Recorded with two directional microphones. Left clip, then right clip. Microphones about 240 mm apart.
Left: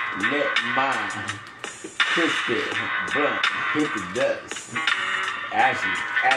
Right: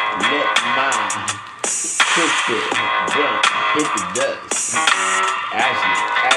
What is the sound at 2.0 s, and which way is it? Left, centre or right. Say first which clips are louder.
Speech: right 5 dB; right.